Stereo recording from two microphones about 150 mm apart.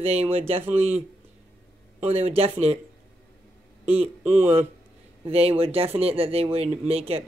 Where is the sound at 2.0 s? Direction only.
40° right (ahead or behind).